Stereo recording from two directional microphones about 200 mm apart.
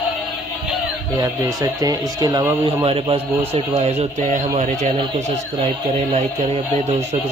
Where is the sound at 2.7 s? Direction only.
25° right (ahead or behind).